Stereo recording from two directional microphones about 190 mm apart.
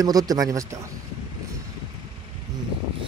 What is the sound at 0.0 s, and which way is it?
Speech, 20° right (ahead or behind).